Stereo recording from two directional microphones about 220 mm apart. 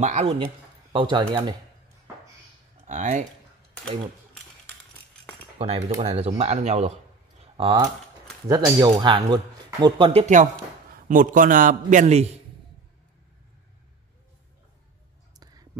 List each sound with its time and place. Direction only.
0.0 s a man's voice: 30° right (ahead or behind)
2.9 s a man's voice: 30° right (ahead or behind)
5.6 s a man's voice: 30° right (ahead or behind)
15.3 s a sound: 15° right (ahead or behind)